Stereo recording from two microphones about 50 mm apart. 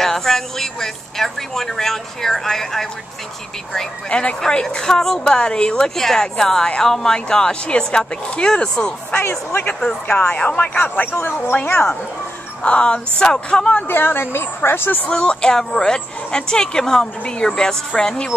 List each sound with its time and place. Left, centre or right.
0.0 s speech: centre
4.1 s speech: left
9.2 s speech: left
10.0 s speech: left
11.7 s speech: left
13.7 s speech: left
15.0 s speech: centre